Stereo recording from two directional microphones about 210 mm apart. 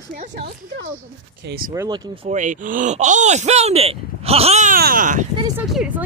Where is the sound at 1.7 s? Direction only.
15° right (ahead or behind); by 5.2 s 40° right (ahead or behind).